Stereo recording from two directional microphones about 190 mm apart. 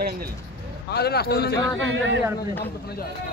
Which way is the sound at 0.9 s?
55° left (ahead or behind).